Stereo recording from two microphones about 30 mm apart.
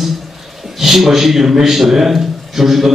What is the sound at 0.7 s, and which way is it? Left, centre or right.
A man's voice, centre.